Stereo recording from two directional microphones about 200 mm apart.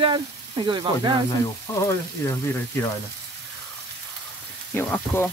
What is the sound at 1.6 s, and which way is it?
Frying, 15° left (ahead or behind).